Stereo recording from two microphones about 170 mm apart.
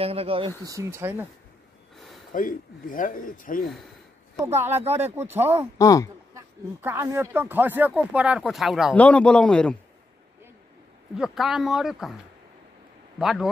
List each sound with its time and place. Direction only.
0.0 s speech: 35° right (ahead or behind)
0.7 s speech: 15° right (ahead or behind)
2.0 s a sound: centre (ahead or behind)
2.3 s speech: 55° left (ahead or behind)
4.4 s speech: 15° right (ahead or behind)
4.6 s speech: 40° right (ahead or behind)
4.9 s speech: 10° right (ahead or behind)
5.8 s speech: 20° left (ahead or behind)
6.3 s a man's voice: 15° right (ahead or behind); by 9.8 s 5° left (ahead or behind)
11.1 s speech: centre (ahead or behind)
13.2 s speech: centre (ahead or behind)